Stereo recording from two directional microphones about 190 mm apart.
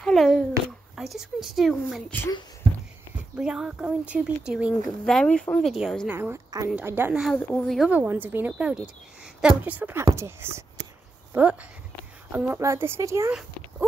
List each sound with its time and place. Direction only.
0.0 s a sound: 5° left (ahead or behind)
0.9 s speech: centre (ahead or behind)
3.2 s speech: 5° right (ahead or behind)
6.1 s speech: 15° right (ahead or behind)